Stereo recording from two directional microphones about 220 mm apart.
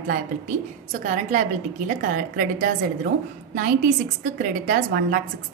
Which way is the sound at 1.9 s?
40° right (ahead or behind).